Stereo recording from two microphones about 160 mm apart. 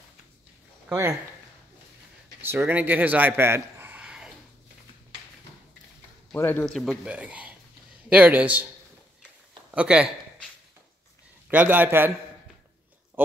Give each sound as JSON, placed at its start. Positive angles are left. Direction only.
{"t": 0.8, "sound": "speech", "side_deg": -15}
{"t": 2.4, "sound": "a man's voice", "side_deg": -15}
{"t": 6.3, "sound": "a man's voice", "side_deg": 10}
{"t": 9.8, "sound": "a man's voice", "side_deg": -5}
{"t": 11.4, "sound": "a man's voice", "side_deg": -10}